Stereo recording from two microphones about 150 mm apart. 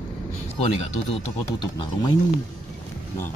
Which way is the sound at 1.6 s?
30° left (ahead or behind).